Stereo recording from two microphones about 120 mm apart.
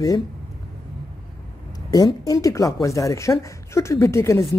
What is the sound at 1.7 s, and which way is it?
Speech, 35° left (ahead or behind).